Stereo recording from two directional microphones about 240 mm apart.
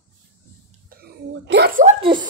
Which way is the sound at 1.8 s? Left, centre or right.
Right.